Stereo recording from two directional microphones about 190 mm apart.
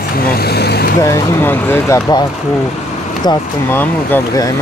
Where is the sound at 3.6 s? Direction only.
10° left (ahead or behind).